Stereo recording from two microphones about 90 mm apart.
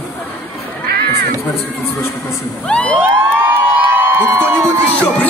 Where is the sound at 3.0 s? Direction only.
20° right (ahead or behind).